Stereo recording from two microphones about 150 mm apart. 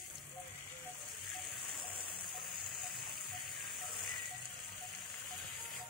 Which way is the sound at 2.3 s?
Centre (ahead or behind).